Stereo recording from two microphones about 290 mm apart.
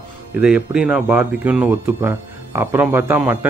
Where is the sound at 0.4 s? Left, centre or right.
Centre.